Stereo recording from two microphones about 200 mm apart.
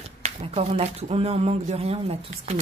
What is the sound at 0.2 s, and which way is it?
Speech, 30° right (ahead or behind).